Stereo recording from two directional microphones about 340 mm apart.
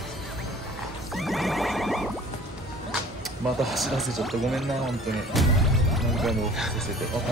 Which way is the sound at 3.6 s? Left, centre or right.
Centre.